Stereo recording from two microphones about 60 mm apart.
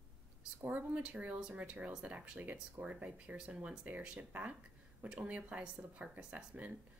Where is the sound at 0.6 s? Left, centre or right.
Right.